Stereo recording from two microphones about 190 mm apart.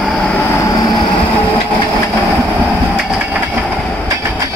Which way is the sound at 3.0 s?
5° right (ahead or behind).